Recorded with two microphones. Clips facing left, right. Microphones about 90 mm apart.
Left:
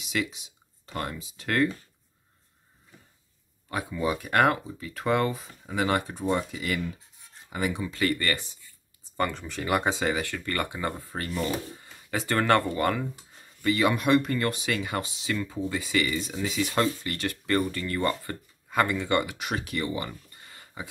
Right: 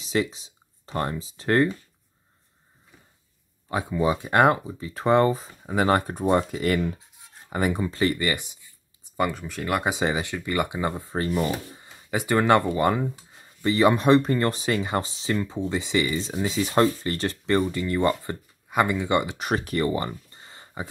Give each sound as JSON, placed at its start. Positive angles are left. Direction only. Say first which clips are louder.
{"t": 0.0, "sound": "speech", "louder": "right 5 dB", "side_deg": -35}
{"t": 3.6, "sound": "speech", "louder": "right 5 dB", "side_deg": -25}
{"t": 8.0, "sound": "speech", "louder": "right 1 dB", "side_deg": -20}
{"t": 9.8, "sound": "speech", "louder": "right 2 dB", "side_deg": -20}
{"t": 13.6, "sound": "speech", "louder": "right 4 dB", "side_deg": -30}
{"t": 19.3, "sound": "speech", "louder": "right 5 dB", "side_deg": -40}
{"t": 20.3, "sound": "a sound", "louder": "right 3 dB", "side_deg": -30}